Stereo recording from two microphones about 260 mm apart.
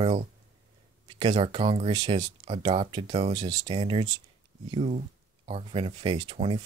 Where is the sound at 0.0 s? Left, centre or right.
Right.